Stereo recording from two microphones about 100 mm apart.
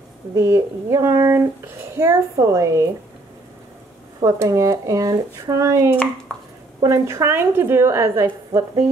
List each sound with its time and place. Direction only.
0.3 s a woman's voice: 30° right (ahead or behind)
4.4 s speech: 30° right (ahead or behind)
6.3 s a sound: 10° left (ahead or behind)
6.8 s a woman's voice: 30° right (ahead or behind)